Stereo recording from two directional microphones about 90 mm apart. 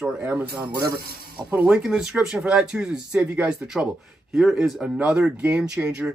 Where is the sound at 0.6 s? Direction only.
60° right (ahead or behind).